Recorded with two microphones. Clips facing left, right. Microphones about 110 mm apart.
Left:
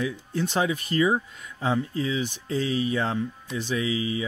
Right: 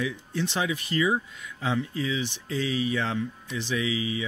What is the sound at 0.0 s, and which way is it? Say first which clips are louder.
Speech: left 2 dB; 45° left (ahead or behind).